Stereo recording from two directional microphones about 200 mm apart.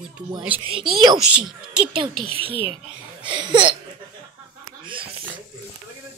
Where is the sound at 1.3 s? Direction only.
5° right (ahead or behind).